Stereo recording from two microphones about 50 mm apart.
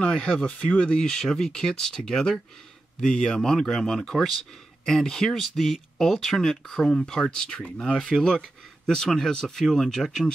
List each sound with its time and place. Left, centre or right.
0.0 s speech: centre
1.0 s speech: centre